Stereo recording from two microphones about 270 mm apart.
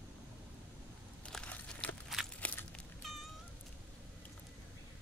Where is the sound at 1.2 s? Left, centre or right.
Centre.